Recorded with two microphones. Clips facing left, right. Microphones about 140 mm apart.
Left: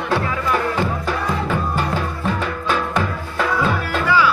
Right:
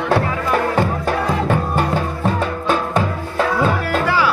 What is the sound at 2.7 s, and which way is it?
Music, 35° right (ahead or behind).